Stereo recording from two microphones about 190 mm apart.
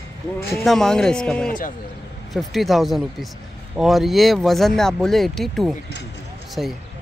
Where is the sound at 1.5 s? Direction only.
45° left (ahead or behind).